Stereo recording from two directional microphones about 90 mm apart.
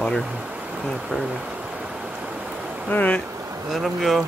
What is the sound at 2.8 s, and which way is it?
Speech, 15° left (ahead or behind).